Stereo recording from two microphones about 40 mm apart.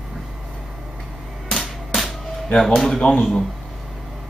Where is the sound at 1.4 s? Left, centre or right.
Centre.